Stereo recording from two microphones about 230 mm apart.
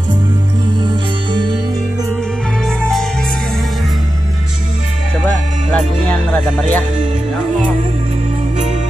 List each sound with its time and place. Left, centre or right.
0.8 s music: right
6.0 s music: centre